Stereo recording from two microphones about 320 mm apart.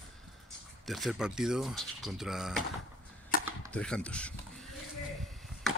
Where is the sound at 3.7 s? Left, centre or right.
Centre.